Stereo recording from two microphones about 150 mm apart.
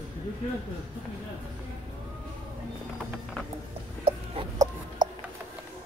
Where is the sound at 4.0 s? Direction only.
40° right (ahead or behind).